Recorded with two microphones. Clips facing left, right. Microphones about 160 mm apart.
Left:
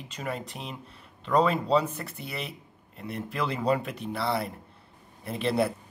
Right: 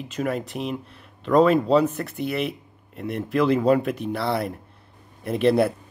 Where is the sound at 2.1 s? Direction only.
65° right (ahead or behind).